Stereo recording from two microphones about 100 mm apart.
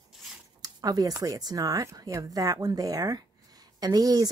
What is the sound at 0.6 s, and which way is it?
Speech, 40° right (ahead or behind).